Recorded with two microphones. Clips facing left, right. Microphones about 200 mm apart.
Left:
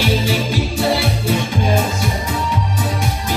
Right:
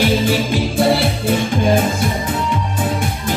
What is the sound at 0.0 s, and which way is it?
Music, 50° right (ahead or behind).